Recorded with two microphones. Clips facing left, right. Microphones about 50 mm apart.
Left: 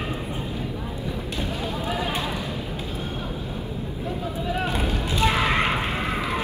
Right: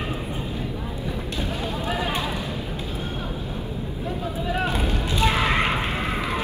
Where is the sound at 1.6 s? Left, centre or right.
Right.